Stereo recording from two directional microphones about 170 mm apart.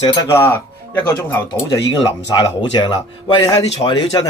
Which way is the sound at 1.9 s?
25° left (ahead or behind).